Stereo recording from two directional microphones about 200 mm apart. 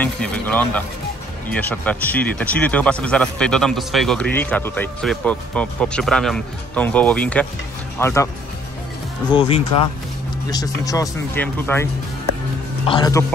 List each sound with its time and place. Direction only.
0.0 s speech: 5° left (ahead or behind)
9.3 s speech: 25° left (ahead or behind); by 11.9 s 10° left (ahead or behind)
12.8 s speech: 20° left (ahead or behind)